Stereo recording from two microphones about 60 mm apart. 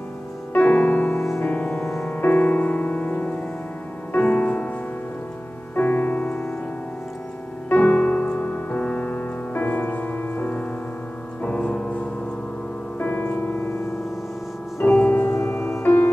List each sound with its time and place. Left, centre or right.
0.5 s music: left
5.8 s music: left
7.7 s music: left
11.4 s music: centre
13.0 s music: left
14.9 s music: left